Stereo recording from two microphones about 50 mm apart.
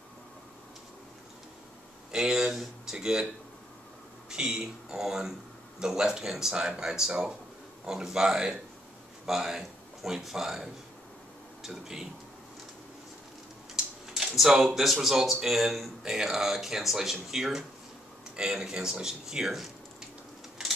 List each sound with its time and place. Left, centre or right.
2.1 s speech: centre
4.3 s speech: centre
13.7 s a sound: centre
14.3 s speech: centre